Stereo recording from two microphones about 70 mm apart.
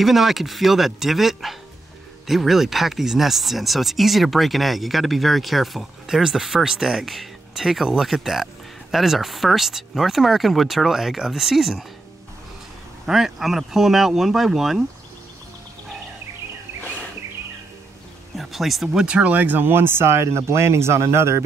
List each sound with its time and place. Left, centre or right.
0.0 s speech: centre
13.0 s speech: centre
18.3 s speech: centre
19.0 s speech: centre; by 21.4 s right